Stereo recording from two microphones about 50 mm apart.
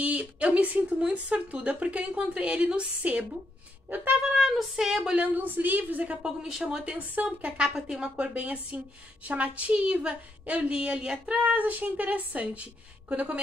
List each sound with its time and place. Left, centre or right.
0.0 s a woman's voice: right
4.2 s a woman's voice: centre
5.1 s a woman's voice: right
6.2 s a woman's voice: centre
6.9 s a woman's voice: right
7.6 s a woman's voice: centre
8.4 s a woman's voice: right